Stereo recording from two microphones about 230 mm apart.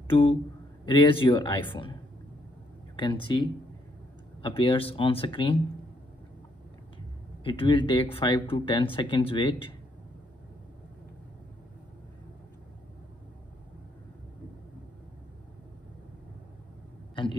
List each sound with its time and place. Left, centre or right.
0.1 s speech: left
3.0 s speech: left
7.4 s speech: left
17.1 s a sound: left